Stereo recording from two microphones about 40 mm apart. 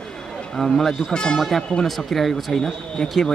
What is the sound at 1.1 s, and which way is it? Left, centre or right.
Speech, centre.